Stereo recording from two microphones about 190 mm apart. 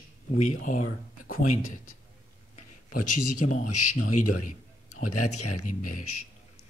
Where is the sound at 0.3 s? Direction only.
45° left (ahead or behind).